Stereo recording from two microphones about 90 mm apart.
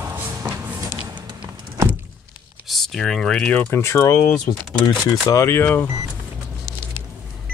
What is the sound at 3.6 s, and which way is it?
Speech, 30° left (ahead or behind).